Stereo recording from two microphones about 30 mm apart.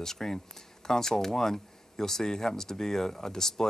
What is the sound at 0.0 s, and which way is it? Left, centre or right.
Speech, centre.